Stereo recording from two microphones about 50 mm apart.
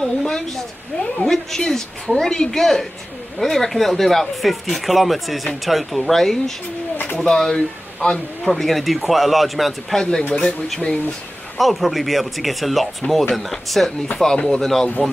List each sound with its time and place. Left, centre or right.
0.0 s a sound: centre
1.1 s a woman's voice: centre
10.8 s a woman's voice: centre
11.5 s speech: centre
14.1 s a woman's voice: centre